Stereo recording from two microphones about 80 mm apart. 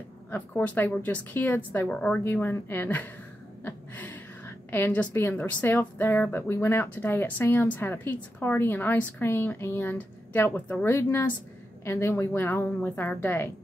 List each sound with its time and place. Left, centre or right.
0.3 s a woman's voice: left
1.9 s a woman's voice: centre
2.2 s a woman's voice: left
3.6 s a sound: left
4.6 s a woman's voice: left
10.9 s a woman's voice: left